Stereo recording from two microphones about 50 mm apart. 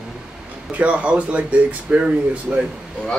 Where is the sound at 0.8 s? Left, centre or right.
Right.